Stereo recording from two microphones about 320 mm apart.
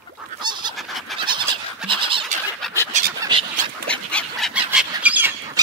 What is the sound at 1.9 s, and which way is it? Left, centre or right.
Bird, centre.